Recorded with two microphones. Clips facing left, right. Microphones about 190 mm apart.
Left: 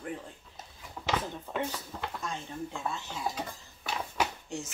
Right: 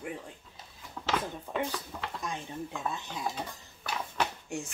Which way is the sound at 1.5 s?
5° left (ahead or behind).